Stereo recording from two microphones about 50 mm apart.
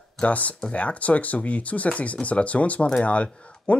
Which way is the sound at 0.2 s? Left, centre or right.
Left.